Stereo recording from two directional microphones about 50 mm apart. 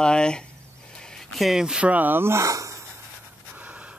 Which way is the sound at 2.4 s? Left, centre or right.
Right.